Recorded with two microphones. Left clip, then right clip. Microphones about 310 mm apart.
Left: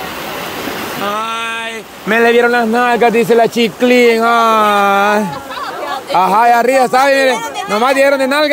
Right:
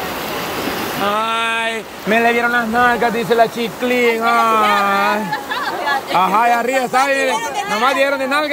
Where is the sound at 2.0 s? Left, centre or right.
Centre.